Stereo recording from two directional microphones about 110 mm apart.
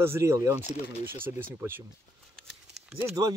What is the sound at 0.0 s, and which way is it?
Speech, 25° right (ahead or behind).